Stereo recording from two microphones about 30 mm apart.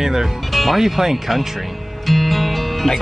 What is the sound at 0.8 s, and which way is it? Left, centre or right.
Speech, centre.